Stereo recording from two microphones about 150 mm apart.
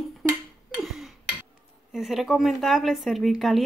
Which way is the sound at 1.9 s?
Centre (ahead or behind).